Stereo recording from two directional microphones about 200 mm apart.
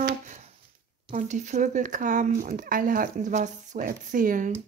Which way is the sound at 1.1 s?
35° right (ahead or behind).